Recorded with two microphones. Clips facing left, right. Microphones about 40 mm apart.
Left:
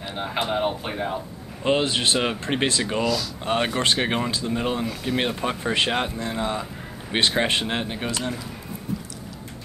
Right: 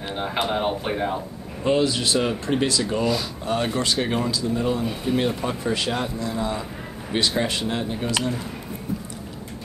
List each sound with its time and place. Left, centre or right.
0.1 s speech: centre
1.6 s speech: left